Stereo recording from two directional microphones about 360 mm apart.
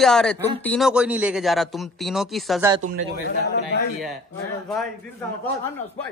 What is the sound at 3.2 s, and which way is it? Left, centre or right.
Speech, left.